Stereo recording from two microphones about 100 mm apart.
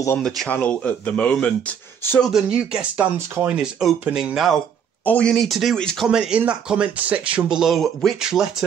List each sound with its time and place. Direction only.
0.5 s speech: 15° left (ahead or behind)
2.2 s speech: 5° right (ahead or behind)
5.0 s speech: 10° left (ahead or behind)
6.0 s speech: 10° right (ahead or behind)